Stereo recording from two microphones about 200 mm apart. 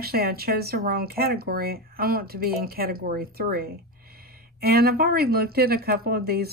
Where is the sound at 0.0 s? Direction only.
50° right (ahead or behind).